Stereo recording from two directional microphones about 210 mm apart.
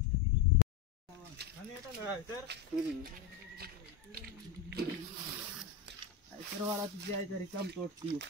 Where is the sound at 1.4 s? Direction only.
50° right (ahead or behind).